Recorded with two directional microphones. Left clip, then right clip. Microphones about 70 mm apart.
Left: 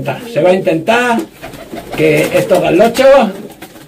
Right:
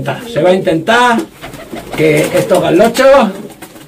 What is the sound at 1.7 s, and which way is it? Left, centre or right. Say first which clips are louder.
Speech: even; centre.